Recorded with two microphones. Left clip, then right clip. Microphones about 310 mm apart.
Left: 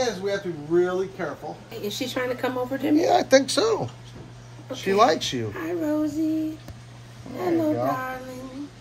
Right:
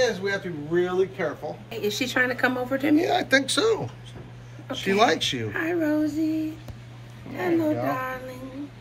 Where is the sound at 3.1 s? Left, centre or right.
Left.